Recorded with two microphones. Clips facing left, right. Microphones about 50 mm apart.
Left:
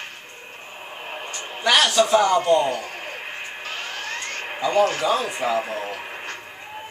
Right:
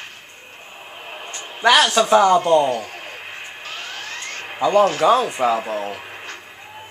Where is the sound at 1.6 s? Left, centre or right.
Right.